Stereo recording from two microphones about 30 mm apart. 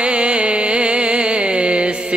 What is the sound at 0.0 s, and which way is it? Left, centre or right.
Music, right.